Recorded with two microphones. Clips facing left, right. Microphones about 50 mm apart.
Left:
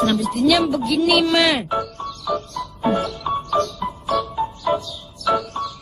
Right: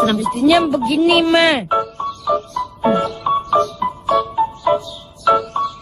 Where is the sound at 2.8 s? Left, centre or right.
Right.